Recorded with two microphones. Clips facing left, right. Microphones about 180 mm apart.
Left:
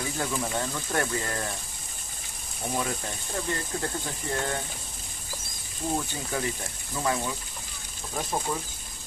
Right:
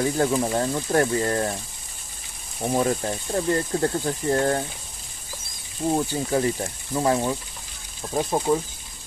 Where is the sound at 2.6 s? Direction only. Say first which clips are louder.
Right 8 dB; 40° right (ahead or behind).